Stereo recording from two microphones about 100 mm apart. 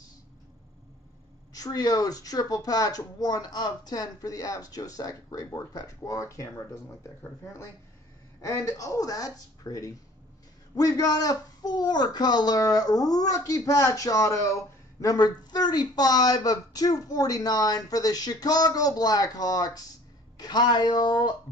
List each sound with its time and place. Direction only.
1.5 s a man's voice: 40° left (ahead or behind)
8.4 s a man's voice: 30° left (ahead or behind); by 21.3 s 50° left (ahead or behind)